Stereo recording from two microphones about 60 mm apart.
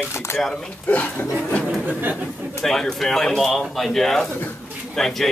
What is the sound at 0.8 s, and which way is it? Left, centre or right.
Speech, left.